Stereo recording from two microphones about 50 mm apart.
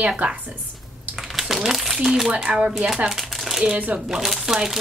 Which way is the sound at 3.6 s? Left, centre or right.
Right.